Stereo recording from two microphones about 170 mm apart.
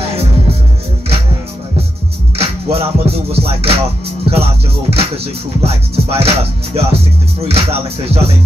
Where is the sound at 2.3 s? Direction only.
35° right (ahead or behind).